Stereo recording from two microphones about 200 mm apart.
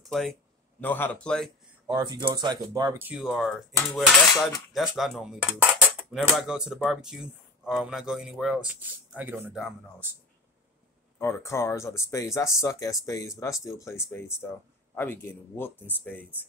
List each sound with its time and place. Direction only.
0.0 s a sound: centre (ahead or behind)
0.7 s speech: 10° left (ahead or behind)
1.9 s speech: 20° right (ahead or behind); by 9.8 s centre (ahead or behind)
11.1 s speech: 15° left (ahead or behind)